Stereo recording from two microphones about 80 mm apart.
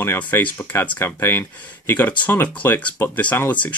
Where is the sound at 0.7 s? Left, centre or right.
Left.